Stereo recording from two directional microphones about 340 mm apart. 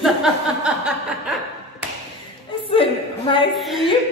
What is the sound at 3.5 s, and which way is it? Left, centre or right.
Speech, centre.